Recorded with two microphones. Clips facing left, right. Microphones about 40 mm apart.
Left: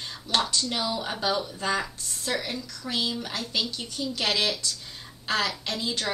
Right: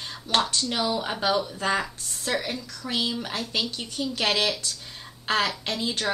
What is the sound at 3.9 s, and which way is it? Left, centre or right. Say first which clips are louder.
A woman's voice: right 2 dB; right.